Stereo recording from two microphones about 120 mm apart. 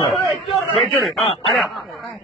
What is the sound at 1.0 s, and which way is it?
Speech, centre (ahead or behind).